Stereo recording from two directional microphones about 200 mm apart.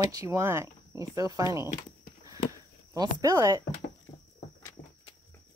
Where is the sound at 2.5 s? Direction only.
15° right (ahead or behind).